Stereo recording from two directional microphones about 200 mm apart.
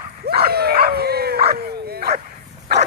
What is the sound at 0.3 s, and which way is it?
Dog, 50° right (ahead or behind).